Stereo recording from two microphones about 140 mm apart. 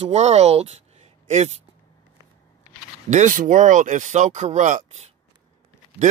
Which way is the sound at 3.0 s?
60° right (ahead or behind).